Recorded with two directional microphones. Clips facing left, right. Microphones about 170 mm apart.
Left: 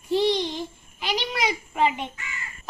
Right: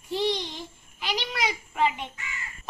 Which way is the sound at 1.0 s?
15° left (ahead or behind).